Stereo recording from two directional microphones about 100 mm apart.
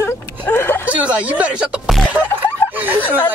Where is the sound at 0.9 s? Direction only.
15° right (ahead or behind).